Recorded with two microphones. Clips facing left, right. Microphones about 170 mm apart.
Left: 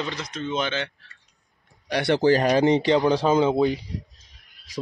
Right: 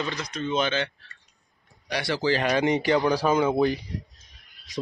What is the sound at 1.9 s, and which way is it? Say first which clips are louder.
Speech: left 6 dB; 55° left (ahead or behind).